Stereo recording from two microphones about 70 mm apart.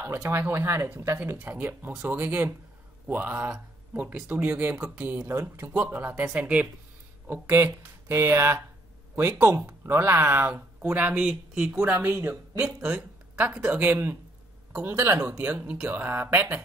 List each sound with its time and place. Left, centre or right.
0.3 s speech: right
6.3 s speech: centre
7.5 s speech: right; by 13.7 s centre
13.7 s speech: right
15.1 s speech: right